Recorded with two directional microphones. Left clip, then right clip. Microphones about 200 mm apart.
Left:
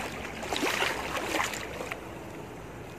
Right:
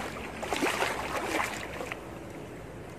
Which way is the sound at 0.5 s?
15° right (ahead or behind).